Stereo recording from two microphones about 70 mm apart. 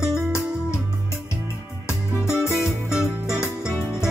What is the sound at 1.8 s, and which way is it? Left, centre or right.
Music, left.